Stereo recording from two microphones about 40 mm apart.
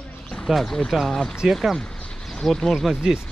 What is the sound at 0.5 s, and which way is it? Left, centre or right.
Speech, centre.